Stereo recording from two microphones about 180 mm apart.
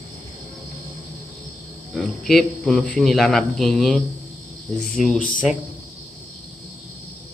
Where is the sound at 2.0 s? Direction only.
Centre (ahead or behind).